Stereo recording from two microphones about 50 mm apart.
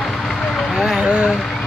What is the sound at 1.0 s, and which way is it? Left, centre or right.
Speech, centre.